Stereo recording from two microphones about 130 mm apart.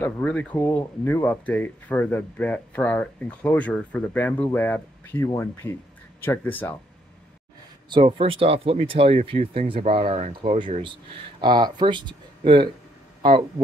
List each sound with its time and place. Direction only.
0.0 s speech: 10° left (ahead or behind)
7.9 s speech: 45° right (ahead or behind)